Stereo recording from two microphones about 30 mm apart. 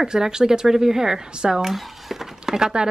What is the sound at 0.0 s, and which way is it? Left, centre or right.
Speech, centre.